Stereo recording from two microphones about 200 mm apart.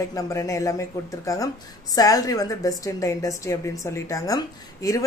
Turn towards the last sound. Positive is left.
turn(degrees=15)  # may be behind; listen again after turning